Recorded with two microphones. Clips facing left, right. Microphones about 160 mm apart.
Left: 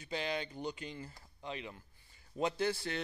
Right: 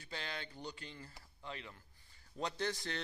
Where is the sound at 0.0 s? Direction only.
15° left (ahead or behind).